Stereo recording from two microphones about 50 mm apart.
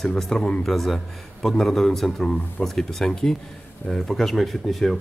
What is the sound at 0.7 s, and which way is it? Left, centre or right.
A man's voice, centre.